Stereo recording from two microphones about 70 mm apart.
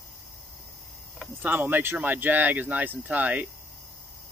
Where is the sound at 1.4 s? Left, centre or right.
Right.